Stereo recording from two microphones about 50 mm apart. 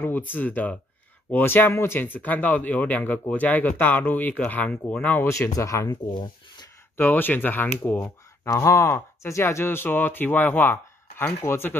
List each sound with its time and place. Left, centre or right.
0.0 s speech: left
2.0 s speech: left
5.6 s speech: left
7.0 s speech: left
8.5 s speech: left
8.8 s speech: left
11.2 s speech: left